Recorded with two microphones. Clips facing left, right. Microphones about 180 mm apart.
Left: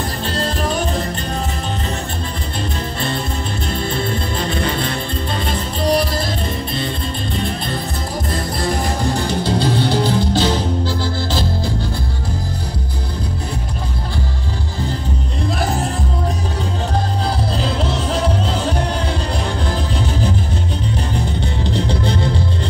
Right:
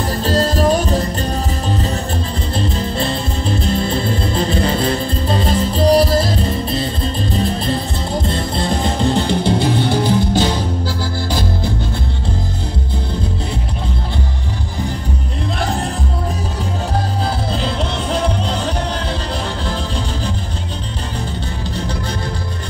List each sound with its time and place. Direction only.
0.2 s music: 40° right (ahead or behind)
3.6 s music: 35° right (ahead or behind)
8.3 s music: 25° right (ahead or behind)
21.6 s music: 25° left (ahead or behind)